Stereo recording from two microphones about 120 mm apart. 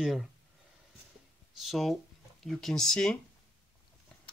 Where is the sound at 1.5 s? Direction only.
Centre (ahead or behind).